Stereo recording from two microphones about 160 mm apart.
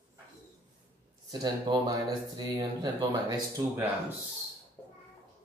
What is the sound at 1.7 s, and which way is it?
Speech, 30° right (ahead or behind).